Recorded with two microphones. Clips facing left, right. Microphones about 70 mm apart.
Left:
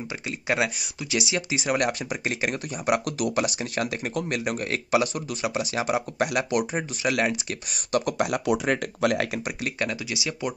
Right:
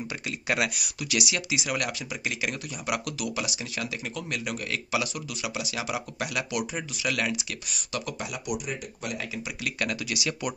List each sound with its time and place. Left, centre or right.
0.5 s speech: left
9.6 s speech: left